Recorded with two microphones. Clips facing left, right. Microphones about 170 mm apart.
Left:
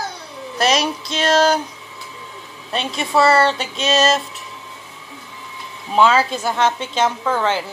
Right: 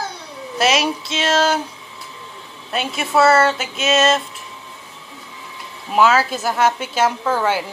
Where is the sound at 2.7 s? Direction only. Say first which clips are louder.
Even; 5° right (ahead or behind).